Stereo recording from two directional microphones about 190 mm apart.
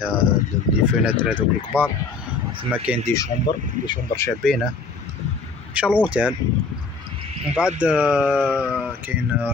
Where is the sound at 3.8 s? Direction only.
15° left (ahead or behind).